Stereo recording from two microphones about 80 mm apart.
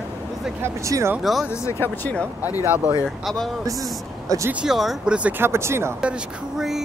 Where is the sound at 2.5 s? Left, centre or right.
Left.